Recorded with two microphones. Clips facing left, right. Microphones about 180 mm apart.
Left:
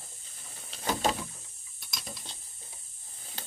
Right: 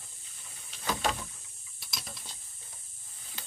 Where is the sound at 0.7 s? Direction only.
35° left (ahead or behind).